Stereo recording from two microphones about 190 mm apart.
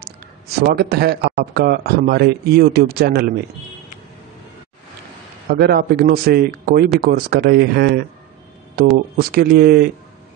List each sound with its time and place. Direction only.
0.6 s speech: 55° right (ahead or behind)
5.5 s speech: 55° right (ahead or behind)